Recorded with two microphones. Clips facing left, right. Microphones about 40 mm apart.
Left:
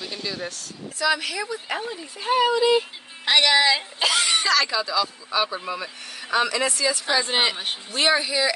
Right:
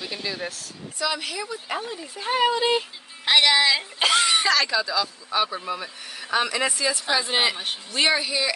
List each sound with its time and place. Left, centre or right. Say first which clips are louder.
0.0 s speech: even; centre
2.3 s speech: left 2 dB; right
3.3 s speech: even; centre
7.5 s speech: left 1 dB; centre
8.0 s speech: left 1 dB; centre